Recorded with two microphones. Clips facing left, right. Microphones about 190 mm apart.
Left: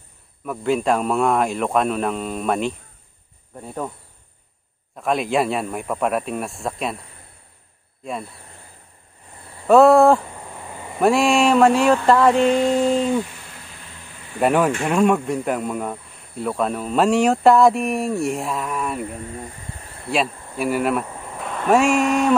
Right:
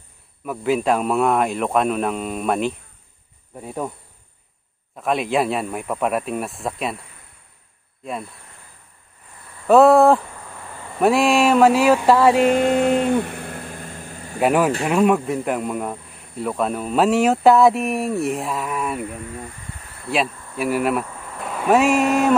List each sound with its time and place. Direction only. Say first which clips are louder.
0.5 s speech: even; centre (ahead or behind)
4.9 s speech: even; centre (ahead or behind)
8.0 s speech: even; centre (ahead or behind)
9.7 s speech: even; centre (ahead or behind)
10.3 s a sound: left 2 dB; 20° left (ahead or behind)
11.0 s speech: even; centre (ahead or behind)
12.4 s a sound: right 1 dB; 50° right (ahead or behind)
14.4 s speech: even; centre (ahead or behind)
20.1 s speech: even; centre (ahead or behind)
21.4 s a sound: even; centre (ahead or behind)